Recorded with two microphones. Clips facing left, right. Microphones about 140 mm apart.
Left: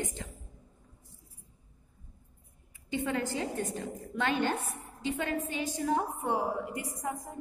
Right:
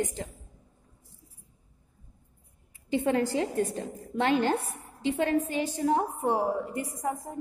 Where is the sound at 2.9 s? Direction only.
35° right (ahead or behind).